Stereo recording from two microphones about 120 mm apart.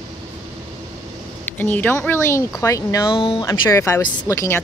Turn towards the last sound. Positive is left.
turn(degrees=25)  # may be behind; listen again after turning